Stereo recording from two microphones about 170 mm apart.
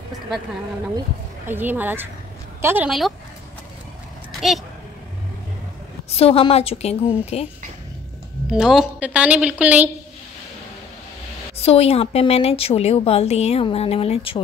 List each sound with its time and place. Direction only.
1.5 s a woman's voice: 10° right (ahead or behind)
6.0 s a woman's voice: 35° left (ahead or behind)
8.5 s a woman's voice: 5° right (ahead or behind)
11.5 s a woman's voice: 35° left (ahead or behind)